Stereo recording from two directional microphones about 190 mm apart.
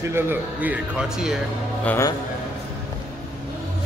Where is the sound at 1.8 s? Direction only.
15° left (ahead or behind).